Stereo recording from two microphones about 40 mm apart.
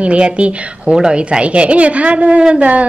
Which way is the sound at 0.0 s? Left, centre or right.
Right.